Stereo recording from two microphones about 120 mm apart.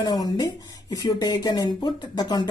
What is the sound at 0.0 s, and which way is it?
Speech, 35° left (ahead or behind).